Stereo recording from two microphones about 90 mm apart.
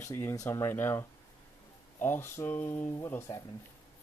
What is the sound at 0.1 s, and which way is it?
Speech, 30° left (ahead or behind).